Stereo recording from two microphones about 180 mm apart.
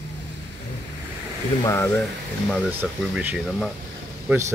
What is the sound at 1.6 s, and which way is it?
Speech, 15° left (ahead or behind).